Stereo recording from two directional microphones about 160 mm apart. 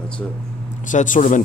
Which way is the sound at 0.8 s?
55° left (ahead or behind).